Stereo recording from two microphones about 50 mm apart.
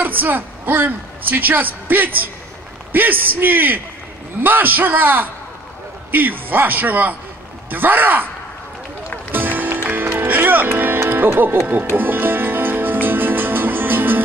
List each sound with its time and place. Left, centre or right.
0.0 s a woman's voice: right
9.3 s music: right